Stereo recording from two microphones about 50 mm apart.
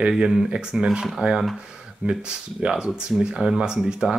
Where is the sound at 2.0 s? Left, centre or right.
Right.